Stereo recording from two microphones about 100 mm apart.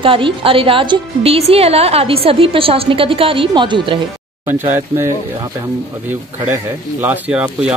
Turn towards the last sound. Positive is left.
turn(degrees=-15)  # may be behind; listen again after turning